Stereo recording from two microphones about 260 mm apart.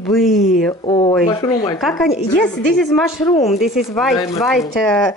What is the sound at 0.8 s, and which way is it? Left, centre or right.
Speech, centre.